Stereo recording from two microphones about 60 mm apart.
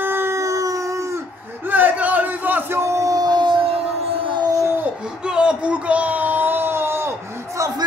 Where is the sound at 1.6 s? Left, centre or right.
Right.